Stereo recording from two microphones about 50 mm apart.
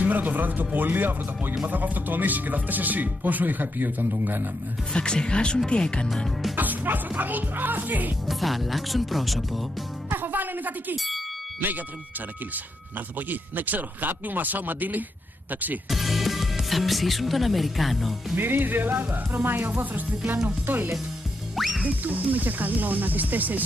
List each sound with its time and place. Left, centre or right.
0.0 s speech: right
4.9 s speech: centre
6.5 s speech: right
8.3 s speech: centre
10.1 s a sound: right
13.3 s speech: right
15.9 s speech: centre
18.3 s speech: right